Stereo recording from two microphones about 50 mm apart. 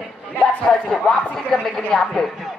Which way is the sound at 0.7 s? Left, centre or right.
Left.